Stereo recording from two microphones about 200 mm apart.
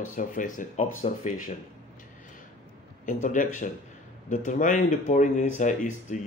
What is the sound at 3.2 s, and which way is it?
Speech, 40° left (ahead or behind).